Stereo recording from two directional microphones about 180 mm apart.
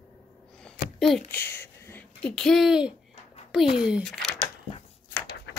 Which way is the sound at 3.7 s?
5° right (ahead or behind).